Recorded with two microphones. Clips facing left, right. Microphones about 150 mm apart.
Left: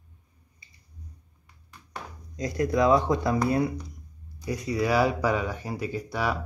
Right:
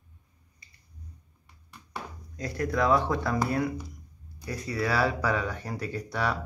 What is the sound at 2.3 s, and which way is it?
Speech, 15° left (ahead or behind).